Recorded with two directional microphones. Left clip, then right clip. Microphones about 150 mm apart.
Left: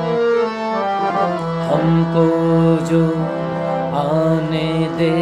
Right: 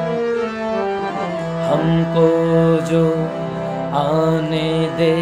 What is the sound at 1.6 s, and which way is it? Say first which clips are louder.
Music: even; centre (ahead or behind).